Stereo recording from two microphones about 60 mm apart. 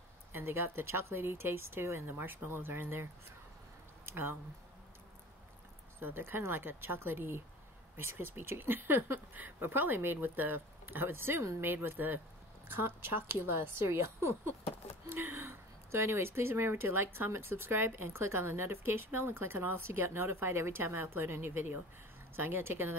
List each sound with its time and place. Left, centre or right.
0.3 s speech: right
5.9 s a woman's voice: right